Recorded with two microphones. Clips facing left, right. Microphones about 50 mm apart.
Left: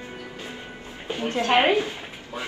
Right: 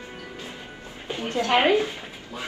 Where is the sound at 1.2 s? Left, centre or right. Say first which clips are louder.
Left 1 dB; left.